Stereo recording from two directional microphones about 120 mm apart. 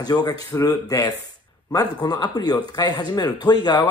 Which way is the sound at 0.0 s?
35° left (ahead or behind).